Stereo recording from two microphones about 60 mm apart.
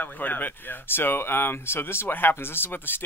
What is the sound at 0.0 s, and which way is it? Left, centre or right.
Speech, left.